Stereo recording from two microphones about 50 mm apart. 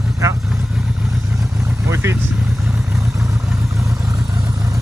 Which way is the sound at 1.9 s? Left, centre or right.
Right.